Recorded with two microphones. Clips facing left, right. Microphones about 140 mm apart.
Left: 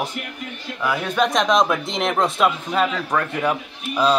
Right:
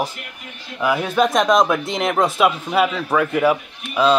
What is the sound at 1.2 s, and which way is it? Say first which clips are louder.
Speech: right 2 dB; centre (ahead or behind).